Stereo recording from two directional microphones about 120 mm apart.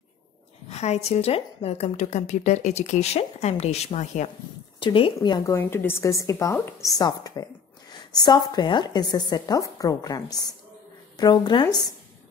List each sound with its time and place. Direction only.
0.7 s a woman's voice: 65° left (ahead or behind)
4.7 s speech: 45° left (ahead or behind)
5.5 s a woman's voice: 15° left (ahead or behind); by 11.6 s 35° left (ahead or behind)